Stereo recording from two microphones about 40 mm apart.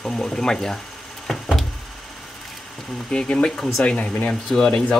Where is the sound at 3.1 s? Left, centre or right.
Left.